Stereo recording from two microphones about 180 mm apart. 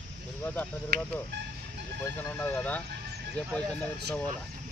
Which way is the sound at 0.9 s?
70° right (ahead or behind).